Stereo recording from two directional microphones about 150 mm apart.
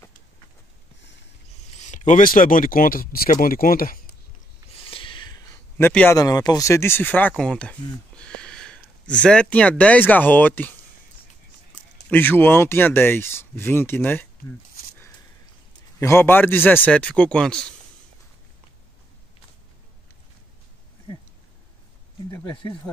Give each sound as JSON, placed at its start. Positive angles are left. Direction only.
{"t": 1.8, "sound": "speech", "side_deg": 55}
{"t": 4.7, "sound": "a sound", "side_deg": 35}
{"t": 5.8, "sound": "speech", "side_deg": 15}
{"t": 6.1, "sound": "speech", "side_deg": 25}
{"t": 12.1, "sound": "speech", "side_deg": 15}
{"t": 16.0, "sound": "speech", "side_deg": 15}